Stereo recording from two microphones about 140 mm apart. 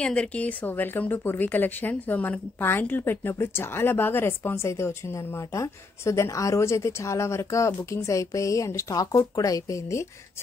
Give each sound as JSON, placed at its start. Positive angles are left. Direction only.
{"t": 0.0, "sound": "speech", "side_deg": 10}